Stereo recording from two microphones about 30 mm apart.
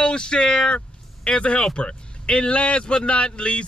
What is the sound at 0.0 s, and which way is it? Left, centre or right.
Speech, left.